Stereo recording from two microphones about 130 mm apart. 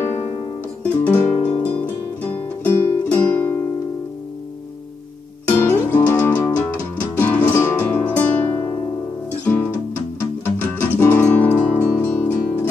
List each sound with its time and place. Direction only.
0.8 s music: 10° left (ahead or behind)
5.6 s music: 15° left (ahead or behind)